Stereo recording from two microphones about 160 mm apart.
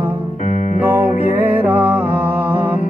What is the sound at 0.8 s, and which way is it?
Music, 15° right (ahead or behind).